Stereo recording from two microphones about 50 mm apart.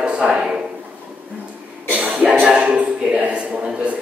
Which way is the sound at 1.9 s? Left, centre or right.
Right.